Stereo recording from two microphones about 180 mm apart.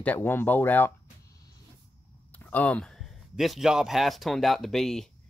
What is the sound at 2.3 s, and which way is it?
Speech, 10° left (ahead or behind).